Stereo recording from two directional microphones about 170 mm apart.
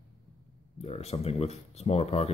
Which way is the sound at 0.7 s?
40° left (ahead or behind).